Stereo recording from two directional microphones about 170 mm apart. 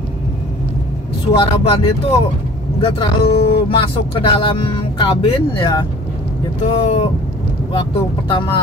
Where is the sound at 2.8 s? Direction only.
30° left (ahead or behind).